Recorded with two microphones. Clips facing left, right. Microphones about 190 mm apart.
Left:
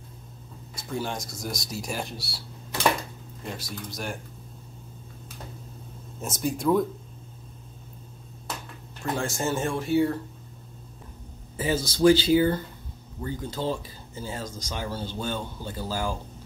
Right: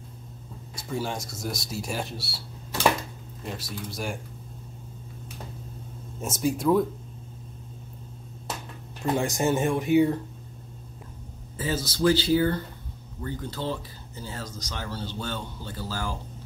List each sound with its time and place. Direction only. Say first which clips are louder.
0.7 s speech: right 1 dB; 5° right (ahead or behind)
3.4 s speech: right 1 dB; centre (ahead or behind)
6.2 s speech: right 1 dB; 5° right (ahead or behind)
9.0 s speech: right 4 dB; 20° right (ahead or behind)
11.5 s speech: left 3 dB; 15° left (ahead or behind)